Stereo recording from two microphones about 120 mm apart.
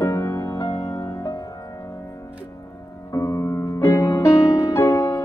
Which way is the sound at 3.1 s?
25° left (ahead or behind).